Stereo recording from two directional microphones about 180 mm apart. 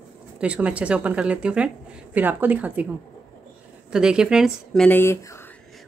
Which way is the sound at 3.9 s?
5° right (ahead or behind).